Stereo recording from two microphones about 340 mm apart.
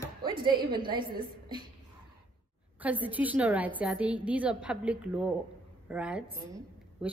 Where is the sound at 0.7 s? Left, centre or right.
Centre.